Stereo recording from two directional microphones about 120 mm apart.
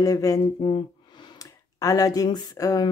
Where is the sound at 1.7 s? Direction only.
30° left (ahead or behind).